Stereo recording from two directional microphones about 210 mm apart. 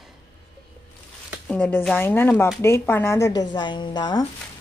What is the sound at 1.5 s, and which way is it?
Speech, 10° left (ahead or behind).